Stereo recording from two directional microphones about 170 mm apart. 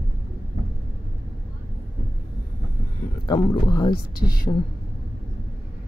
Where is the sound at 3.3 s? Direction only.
25° left (ahead or behind).